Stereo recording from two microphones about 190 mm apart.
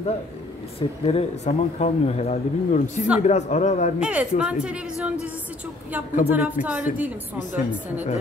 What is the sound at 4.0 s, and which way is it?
A woman's voice, 5° right (ahead or behind).